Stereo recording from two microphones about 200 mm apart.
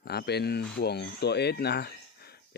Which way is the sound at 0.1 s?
55° left (ahead or behind).